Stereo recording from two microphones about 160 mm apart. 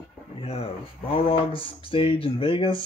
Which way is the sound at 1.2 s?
35° left (ahead or behind).